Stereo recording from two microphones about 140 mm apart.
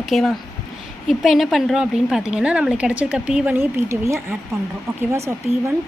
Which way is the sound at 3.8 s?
20° right (ahead or behind).